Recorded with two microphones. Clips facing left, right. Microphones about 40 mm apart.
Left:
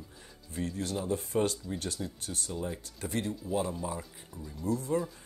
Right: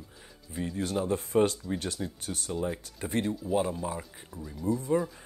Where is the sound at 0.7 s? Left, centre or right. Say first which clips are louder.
Right 5 dB; right.